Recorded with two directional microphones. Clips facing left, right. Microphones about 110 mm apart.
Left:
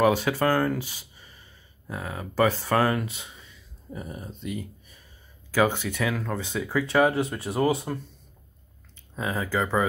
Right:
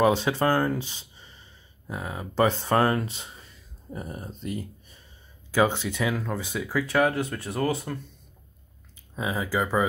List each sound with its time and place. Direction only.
0.0 s speech: 25° right (ahead or behind)
5.5 s speech: 20° right (ahead or behind); by 7.7 s 5° left (ahead or behind)
9.1 s speech: 10° right (ahead or behind)